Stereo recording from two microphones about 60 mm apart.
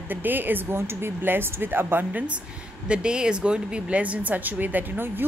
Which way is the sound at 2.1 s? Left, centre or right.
Right.